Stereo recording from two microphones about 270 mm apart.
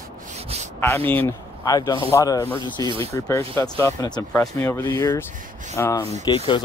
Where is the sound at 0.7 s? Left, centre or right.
Centre.